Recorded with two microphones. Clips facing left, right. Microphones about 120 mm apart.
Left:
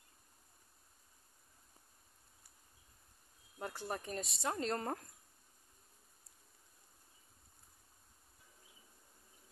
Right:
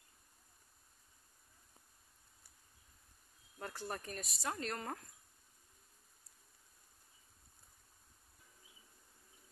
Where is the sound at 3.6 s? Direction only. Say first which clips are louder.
Left 2 dB; 15° left (ahead or behind).